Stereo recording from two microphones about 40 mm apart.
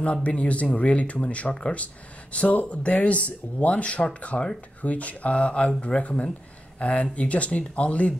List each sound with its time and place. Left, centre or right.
0.0 s speech: left